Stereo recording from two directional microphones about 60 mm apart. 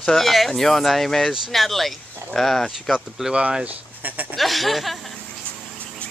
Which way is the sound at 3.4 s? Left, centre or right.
Centre.